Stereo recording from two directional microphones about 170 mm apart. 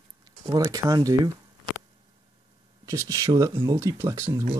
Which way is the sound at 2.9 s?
20° right (ahead or behind).